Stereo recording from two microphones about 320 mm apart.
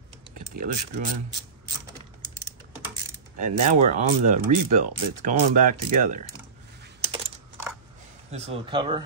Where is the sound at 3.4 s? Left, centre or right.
Right.